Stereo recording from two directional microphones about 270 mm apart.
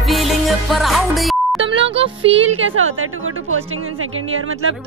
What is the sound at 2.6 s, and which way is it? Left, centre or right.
A woman's voice, right.